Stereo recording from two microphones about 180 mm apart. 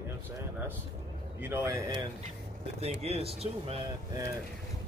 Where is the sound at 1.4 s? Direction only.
15° right (ahead or behind).